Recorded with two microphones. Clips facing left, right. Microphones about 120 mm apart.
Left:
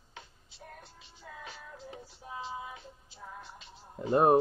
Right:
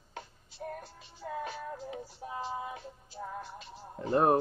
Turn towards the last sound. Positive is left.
turn(degrees=15)  # may be behind; listen again after turning